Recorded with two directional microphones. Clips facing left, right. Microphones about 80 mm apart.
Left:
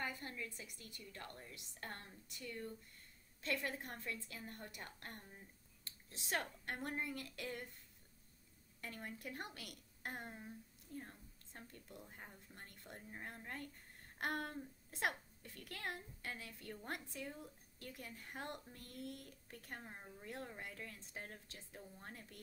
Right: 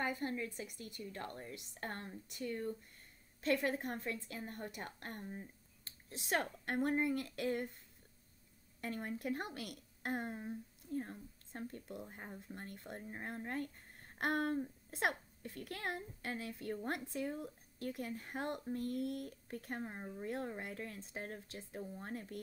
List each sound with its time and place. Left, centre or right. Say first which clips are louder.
0.0 s a woman's voice: right 7 dB; right
6.1 s speech: right 5 dB; right
6.6 s a woman's voice: right 9 dB; right
8.8 s a woman's voice: right 9 dB; right